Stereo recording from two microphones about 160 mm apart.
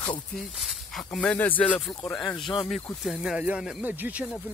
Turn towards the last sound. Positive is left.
turn(degrees=-5)  # may be behind; listen again after turning